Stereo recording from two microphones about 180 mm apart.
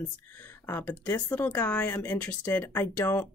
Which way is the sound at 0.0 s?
10° left (ahead or behind).